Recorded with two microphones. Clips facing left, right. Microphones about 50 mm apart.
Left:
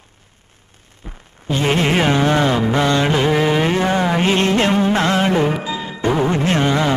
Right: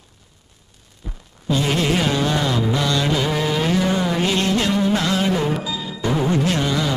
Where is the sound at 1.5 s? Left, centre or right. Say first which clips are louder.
Left 3 dB; left.